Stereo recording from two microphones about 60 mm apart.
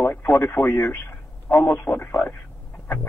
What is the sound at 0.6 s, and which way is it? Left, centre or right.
Speech, left.